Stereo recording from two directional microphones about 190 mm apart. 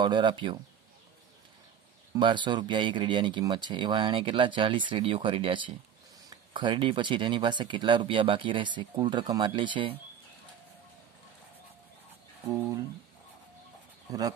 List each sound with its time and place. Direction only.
0.0 s speech: 25° right (ahead or behind)
2.1 s speech: 25° right (ahead or behind)
14.1 s speech: 20° right (ahead or behind)